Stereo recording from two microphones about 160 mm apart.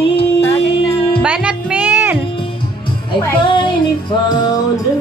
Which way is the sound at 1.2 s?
10° right (ahead or behind).